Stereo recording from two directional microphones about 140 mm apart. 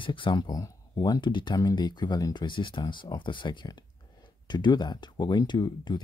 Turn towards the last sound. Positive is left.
turn(degrees=30)  # may be behind; listen again after turning